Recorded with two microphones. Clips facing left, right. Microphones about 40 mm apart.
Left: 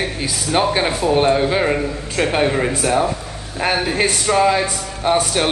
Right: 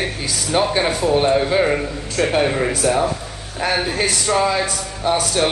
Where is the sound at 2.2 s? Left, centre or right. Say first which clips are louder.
Even; left.